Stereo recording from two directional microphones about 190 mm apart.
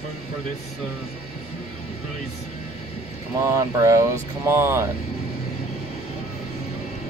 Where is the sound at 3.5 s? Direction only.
15° right (ahead or behind).